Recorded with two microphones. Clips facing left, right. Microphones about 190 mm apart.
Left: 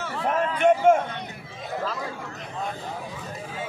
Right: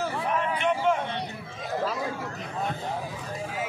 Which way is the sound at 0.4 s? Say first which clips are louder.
Left 9 dB; 50° left (ahead or behind).